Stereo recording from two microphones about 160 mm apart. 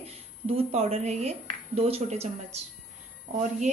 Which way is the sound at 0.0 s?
40° right (ahead or behind).